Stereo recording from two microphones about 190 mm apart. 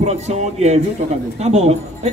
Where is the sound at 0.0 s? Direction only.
35° right (ahead or behind).